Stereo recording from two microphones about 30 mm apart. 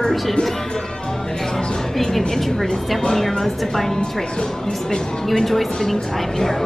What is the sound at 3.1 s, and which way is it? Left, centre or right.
Speech, centre.